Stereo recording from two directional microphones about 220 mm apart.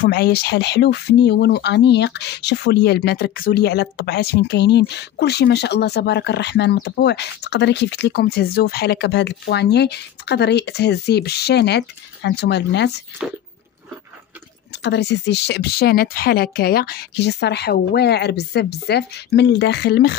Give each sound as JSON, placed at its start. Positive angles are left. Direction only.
{"t": 0.0, "sound": "speech", "side_deg": 45}
{"t": 14.8, "sound": "speech", "side_deg": 50}